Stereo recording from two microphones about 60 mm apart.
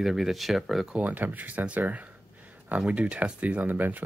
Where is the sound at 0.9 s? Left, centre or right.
Right.